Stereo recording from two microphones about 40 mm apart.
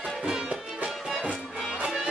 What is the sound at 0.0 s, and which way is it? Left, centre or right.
Music, centre.